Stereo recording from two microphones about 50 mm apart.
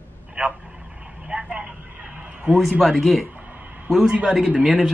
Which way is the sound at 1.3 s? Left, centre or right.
Centre.